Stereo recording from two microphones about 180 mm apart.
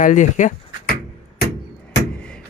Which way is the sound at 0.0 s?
45° left (ahead or behind).